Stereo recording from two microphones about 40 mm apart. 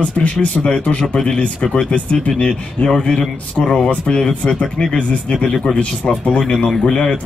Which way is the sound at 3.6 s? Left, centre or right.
Centre.